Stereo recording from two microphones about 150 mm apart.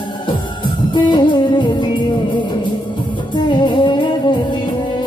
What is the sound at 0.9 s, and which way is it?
Music, 30° left (ahead or behind).